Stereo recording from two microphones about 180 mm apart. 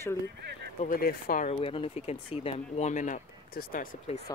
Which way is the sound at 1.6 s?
30° left (ahead or behind).